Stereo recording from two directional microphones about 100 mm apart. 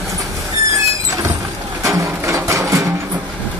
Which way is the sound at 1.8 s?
30° right (ahead or behind).